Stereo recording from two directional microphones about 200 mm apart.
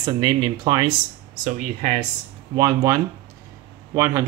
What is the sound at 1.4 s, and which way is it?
Speech, 40° right (ahead or behind).